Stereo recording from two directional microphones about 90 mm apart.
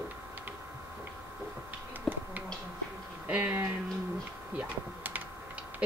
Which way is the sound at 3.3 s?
15° right (ahead or behind).